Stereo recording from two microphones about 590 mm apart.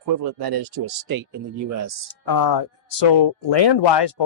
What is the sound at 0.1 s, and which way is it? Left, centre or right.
Speech, right.